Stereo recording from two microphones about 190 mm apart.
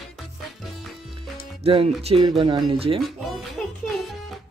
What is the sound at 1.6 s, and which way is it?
Music, 30° right (ahead or behind).